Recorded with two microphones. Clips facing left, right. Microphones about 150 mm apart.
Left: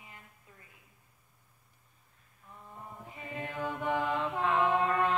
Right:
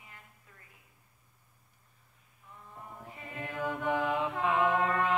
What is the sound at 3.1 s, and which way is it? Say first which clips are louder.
Mantra: left 3 dB; 20° left (ahead or behind).